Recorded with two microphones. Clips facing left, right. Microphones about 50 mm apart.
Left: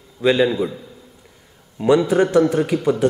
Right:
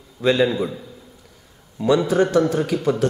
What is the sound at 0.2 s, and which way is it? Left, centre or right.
Speech, centre.